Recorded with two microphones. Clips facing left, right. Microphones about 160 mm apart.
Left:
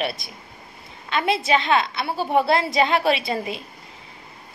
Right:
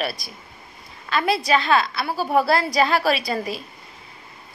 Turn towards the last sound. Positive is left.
turn(degrees=25)  # may be behind; listen again after turning